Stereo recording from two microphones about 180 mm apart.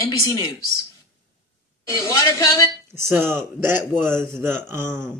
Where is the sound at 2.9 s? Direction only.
15° right (ahead or behind).